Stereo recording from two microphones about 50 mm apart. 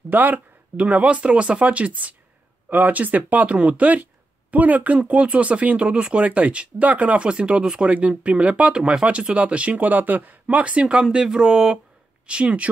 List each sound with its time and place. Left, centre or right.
0.1 s speech: right